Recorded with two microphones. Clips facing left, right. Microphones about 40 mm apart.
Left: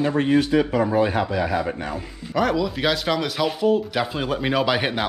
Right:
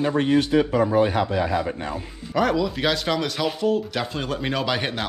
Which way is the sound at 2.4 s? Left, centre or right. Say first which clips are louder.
Even; centre.